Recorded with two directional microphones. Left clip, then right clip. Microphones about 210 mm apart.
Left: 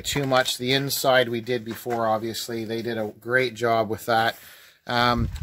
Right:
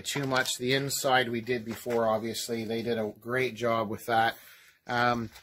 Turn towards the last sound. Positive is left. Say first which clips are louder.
# left 5 dB
turn(degrees=55)  # may be behind; listen again after turning